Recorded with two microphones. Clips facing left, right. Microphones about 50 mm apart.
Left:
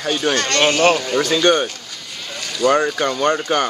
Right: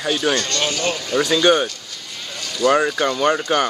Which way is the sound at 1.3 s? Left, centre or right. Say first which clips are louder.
Even; centre.